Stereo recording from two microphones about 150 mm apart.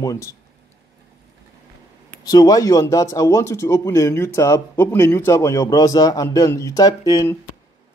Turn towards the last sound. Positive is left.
turn(degrees=25)  # may be behind; listen again after turning